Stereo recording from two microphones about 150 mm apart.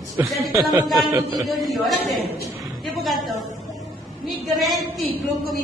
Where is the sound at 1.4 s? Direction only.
Centre (ahead or behind).